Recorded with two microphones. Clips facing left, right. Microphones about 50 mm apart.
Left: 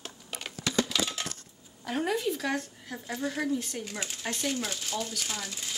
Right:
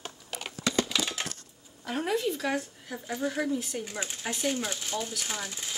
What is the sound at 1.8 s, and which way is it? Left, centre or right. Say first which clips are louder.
Speech: even; centre.